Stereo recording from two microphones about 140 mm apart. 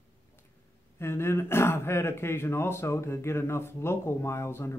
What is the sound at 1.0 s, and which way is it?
Speech, 20° left (ahead or behind).